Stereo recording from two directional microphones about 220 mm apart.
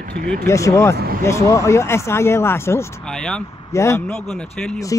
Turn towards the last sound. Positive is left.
turn(degrees=10)  # may be behind; listen again after turning